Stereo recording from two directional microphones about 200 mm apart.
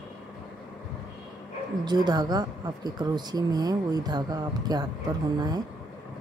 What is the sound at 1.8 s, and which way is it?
Speech, 20° right (ahead or behind).